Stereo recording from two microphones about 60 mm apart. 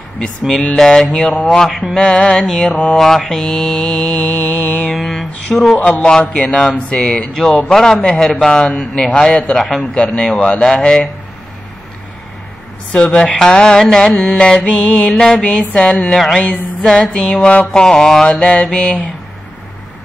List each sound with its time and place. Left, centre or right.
0.5 s mantra: centre
2.4 s speech: centre
2.8 s mantra: centre
4.6 s mantra: left
4.9 s speech: centre
5.8 s mantra: left
7.7 s mantra: centre
9.6 s speech: centre
9.9 s mantra: centre
12.9 s mantra: centre
18.4 s mantra: centre